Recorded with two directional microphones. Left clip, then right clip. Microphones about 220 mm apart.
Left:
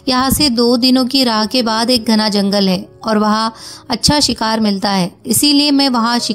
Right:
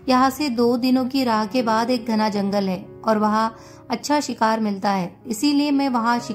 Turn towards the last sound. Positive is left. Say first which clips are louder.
# left 6 dB
turn(degrees=35)  # may be behind; listen again after turning